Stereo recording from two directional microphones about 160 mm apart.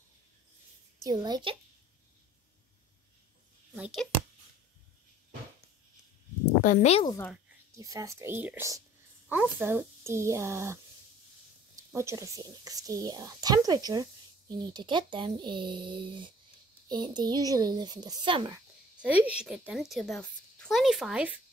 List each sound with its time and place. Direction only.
1.0 s speech: 25° right (ahead or behind)
3.7 s speech: 5° right (ahead or behind)
6.6 s speech: 55° left (ahead or behind)
7.7 s speech: 20° right (ahead or behind)
11.9 s speech: 15° right (ahead or behind)
18.9 s a woman's voice: 10° right (ahead or behind)